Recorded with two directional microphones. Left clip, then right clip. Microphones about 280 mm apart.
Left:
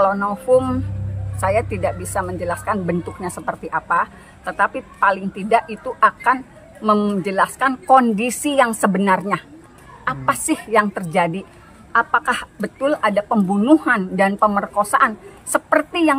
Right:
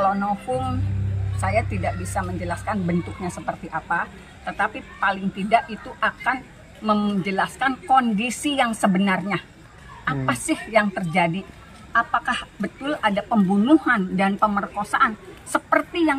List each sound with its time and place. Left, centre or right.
0.0 s speech: centre